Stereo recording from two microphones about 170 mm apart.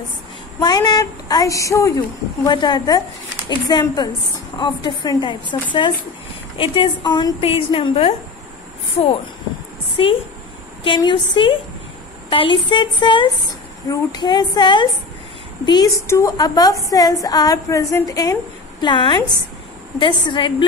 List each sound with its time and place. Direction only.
0.6 s a woman's voice: 25° left (ahead or behind)
10.0 s a woman's voice: 30° left (ahead or behind)